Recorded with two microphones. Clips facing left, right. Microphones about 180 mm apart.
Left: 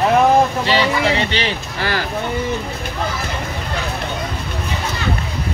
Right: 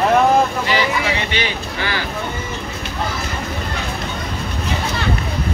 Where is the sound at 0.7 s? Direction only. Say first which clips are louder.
Left 2 dB; 30° left (ahead or behind).